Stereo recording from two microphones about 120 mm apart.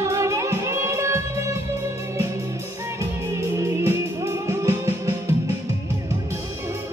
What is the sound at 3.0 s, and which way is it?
Music, 25° right (ahead or behind).